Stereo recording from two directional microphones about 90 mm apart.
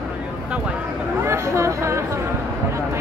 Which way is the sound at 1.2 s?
30° right (ahead or behind).